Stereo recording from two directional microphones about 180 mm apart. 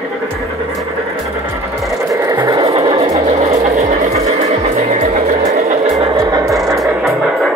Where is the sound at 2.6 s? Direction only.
35° right (ahead or behind).